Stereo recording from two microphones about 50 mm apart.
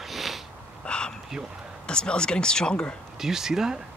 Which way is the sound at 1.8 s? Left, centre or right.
Centre.